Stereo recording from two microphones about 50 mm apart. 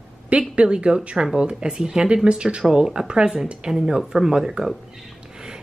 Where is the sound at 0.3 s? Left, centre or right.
Right.